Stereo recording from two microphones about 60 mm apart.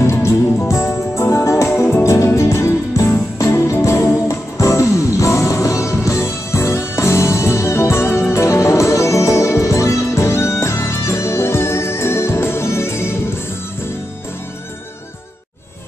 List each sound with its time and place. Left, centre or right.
0.0 s music: left
3.0 s music: left